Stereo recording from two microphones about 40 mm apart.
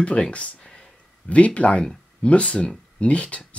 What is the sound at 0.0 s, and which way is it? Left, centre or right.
Speech, left.